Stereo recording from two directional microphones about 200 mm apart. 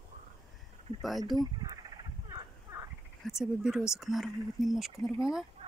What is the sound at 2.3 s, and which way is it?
Fowl, 15° right (ahead or behind).